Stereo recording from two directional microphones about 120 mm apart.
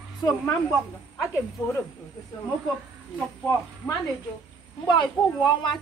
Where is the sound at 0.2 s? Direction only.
30° left (ahead or behind).